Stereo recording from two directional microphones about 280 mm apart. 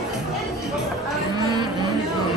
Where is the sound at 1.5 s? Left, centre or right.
Centre.